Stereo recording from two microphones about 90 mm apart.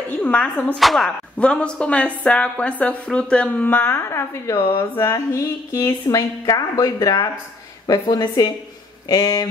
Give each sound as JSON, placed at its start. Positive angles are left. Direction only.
{"t": 0.1, "sound": "speech", "side_deg": 15}
{"t": 0.7, "sound": "speech", "side_deg": 0}